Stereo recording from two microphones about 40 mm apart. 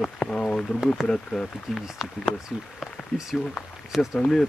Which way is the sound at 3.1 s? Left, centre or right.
Centre.